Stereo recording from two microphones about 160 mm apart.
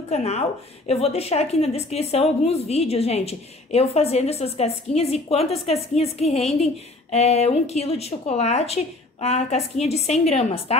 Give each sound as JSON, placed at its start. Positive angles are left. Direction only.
{"t": 0.1, "sound": "a woman's voice", "side_deg": 40}